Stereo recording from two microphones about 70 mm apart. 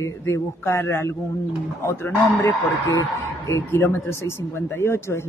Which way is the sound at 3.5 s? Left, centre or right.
Left.